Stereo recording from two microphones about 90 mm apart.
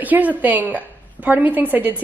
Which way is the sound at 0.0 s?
20° right (ahead or behind).